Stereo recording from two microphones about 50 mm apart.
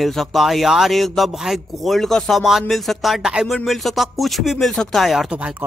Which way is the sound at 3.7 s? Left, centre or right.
Centre.